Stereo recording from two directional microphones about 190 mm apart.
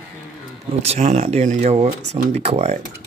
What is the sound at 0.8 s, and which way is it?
Speech, 35° right (ahead or behind).